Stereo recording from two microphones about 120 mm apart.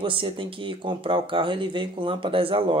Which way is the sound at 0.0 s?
45° right (ahead or behind).